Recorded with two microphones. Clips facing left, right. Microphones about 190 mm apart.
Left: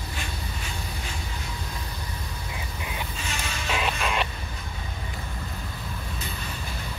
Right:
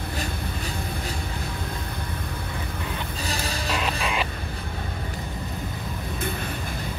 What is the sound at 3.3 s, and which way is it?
Music, 35° right (ahead or behind).